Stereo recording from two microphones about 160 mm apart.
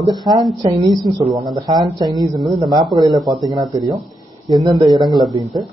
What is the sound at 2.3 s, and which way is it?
Speech, centre (ahead or behind).